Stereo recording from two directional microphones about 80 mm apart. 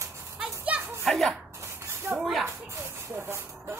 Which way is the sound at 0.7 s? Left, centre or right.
Centre.